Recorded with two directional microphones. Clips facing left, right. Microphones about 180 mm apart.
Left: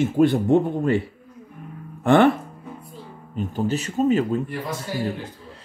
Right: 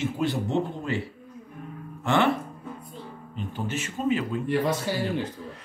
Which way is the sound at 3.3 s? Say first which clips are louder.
Left 8 dB; 40° left (ahead or behind).